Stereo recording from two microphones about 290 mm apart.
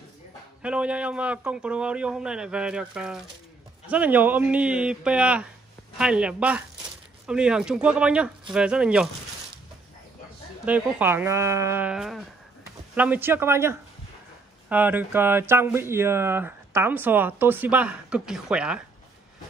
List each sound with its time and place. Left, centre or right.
0.6 s a man's voice: centre
10.6 s a man's voice: centre